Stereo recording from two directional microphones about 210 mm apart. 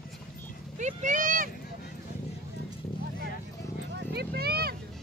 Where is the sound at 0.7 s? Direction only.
35° right (ahead or behind).